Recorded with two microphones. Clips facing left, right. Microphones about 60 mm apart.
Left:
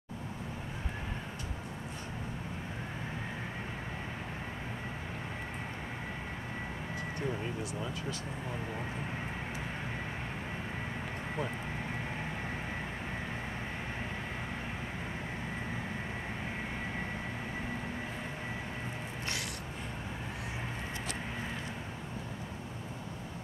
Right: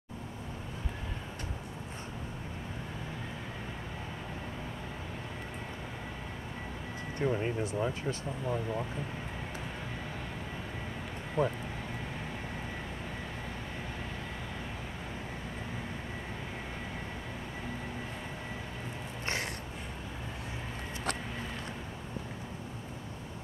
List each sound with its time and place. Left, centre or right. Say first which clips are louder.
7.2 s speech: right 7 dB; right
11.4 s speech: right 8 dB; right